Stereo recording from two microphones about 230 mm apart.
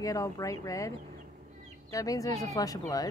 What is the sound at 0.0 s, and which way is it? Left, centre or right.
Speech, centre.